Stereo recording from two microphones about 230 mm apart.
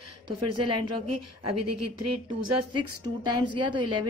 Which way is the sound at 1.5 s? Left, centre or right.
Right.